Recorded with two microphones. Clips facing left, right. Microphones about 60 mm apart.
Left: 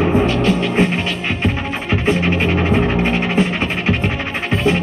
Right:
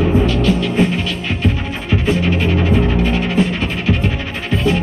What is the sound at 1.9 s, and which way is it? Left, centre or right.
Music, left.